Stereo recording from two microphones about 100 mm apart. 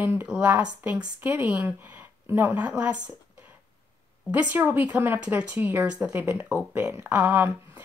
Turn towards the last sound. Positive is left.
turn(degrees=-15)  # may be behind; listen again after turning